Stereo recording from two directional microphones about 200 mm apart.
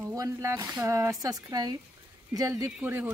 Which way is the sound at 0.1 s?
15° right (ahead or behind).